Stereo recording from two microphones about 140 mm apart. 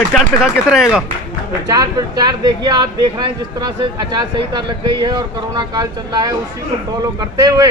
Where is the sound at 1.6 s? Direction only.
25° right (ahead or behind).